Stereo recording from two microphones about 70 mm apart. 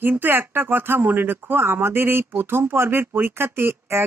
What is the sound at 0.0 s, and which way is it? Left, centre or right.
Speech, right.